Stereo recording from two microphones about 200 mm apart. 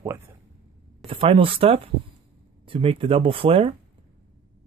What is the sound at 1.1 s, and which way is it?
Speech, 25° right (ahead or behind).